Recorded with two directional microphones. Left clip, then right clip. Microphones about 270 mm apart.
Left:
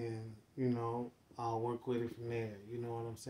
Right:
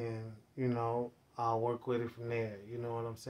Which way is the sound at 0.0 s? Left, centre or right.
Centre.